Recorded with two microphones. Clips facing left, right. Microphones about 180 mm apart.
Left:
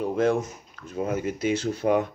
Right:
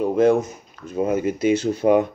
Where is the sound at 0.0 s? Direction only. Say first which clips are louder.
Right 6 dB; 10° right (ahead or behind).